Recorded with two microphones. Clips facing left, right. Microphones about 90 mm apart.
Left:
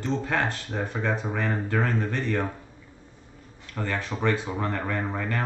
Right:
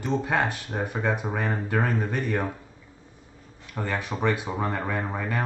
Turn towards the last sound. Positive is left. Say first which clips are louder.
# even
turn(degrees=-15)  # may be behind; listen again after turning